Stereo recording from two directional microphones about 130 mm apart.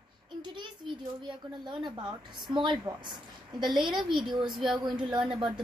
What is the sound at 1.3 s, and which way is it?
A woman's voice, 35° right (ahead or behind).